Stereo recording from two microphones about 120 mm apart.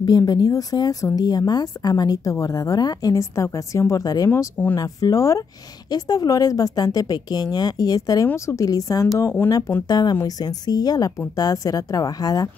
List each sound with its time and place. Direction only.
0.0 s speech: 35° left (ahead or behind)
4.3 s speech: 15° left (ahead or behind)
4.7 s a woman's voice: 30° left (ahead or behind)